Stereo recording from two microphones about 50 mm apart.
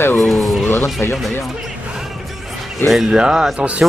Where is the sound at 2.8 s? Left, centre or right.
Centre.